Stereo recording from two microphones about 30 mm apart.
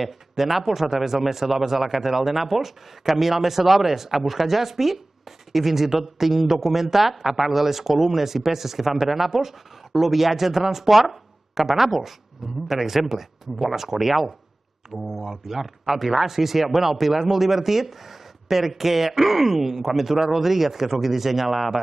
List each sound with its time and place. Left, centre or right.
0.0 s speech: centre
15.2 s speech: centre